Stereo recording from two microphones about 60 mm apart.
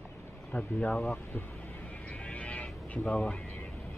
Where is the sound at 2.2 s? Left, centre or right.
Left.